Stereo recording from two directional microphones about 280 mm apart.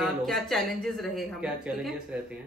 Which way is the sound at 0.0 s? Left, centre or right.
Centre.